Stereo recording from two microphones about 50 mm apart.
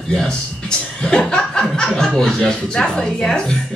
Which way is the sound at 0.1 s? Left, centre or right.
Centre.